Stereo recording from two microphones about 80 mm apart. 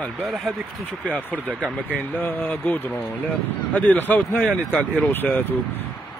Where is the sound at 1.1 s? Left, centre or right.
Centre.